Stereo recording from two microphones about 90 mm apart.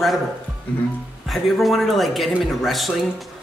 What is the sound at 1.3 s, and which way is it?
Speech, centre (ahead or behind).